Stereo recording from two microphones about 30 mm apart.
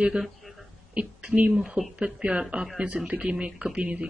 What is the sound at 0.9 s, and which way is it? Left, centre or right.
Speech, right.